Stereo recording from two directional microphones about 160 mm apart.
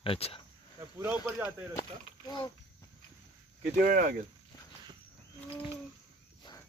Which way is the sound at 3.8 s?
60° right (ahead or behind).